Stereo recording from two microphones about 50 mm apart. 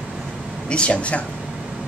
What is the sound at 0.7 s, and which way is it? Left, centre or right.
Speech, left.